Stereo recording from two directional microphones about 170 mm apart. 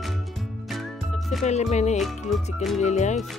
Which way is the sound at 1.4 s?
40° left (ahead or behind).